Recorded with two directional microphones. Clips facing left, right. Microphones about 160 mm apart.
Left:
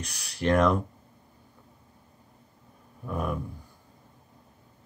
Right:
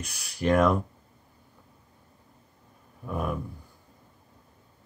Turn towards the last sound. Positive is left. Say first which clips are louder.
# even
turn(degrees=-5)  # may be behind; listen again after turning